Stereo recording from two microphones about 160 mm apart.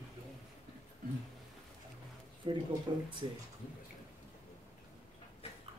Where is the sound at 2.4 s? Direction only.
30° right (ahead or behind).